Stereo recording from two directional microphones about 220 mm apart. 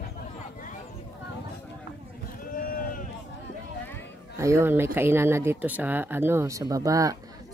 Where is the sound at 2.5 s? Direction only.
40° left (ahead or behind).